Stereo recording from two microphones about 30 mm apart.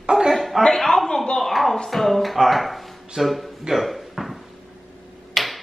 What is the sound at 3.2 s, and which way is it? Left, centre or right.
Speech, centre.